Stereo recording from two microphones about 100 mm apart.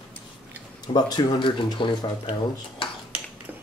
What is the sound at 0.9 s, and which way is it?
Speech, 40° left (ahead or behind).